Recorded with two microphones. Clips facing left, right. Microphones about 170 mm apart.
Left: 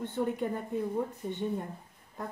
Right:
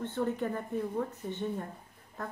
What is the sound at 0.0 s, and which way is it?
Speech, 15° left (ahead or behind).